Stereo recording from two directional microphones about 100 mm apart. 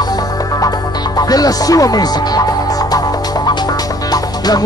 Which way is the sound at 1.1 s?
40° left (ahead or behind).